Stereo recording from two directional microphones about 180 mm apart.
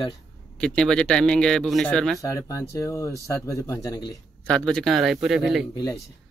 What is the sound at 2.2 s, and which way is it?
Speech, 20° left (ahead or behind).